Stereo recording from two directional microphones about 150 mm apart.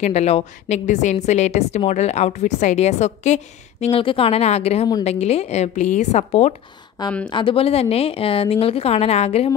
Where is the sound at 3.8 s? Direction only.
35° left (ahead or behind).